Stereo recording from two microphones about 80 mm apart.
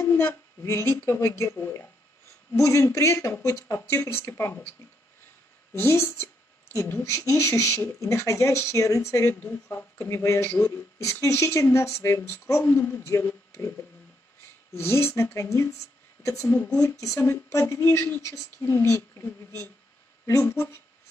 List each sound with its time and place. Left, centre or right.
0.0 s speech: left
9.3 s speech: left
13.5 s a sound: left
14.4 s speech: left
20.2 s speech: left